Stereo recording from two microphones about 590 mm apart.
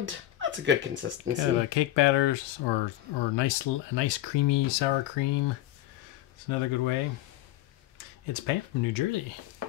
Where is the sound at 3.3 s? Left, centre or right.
Left.